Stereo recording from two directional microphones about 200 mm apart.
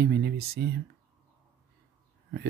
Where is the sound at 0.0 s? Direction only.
55° right (ahead or behind).